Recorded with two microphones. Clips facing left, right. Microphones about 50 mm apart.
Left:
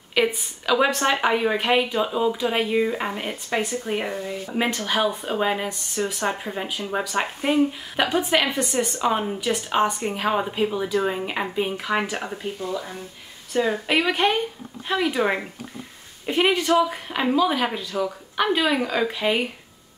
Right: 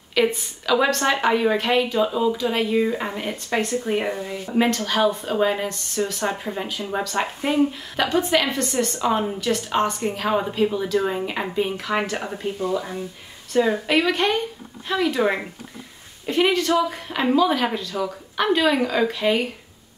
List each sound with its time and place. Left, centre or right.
0.1 s speech: centre
4.5 s speech: centre
12.2 s speech: centre
12.7 s speech: centre
13.5 s speech: centre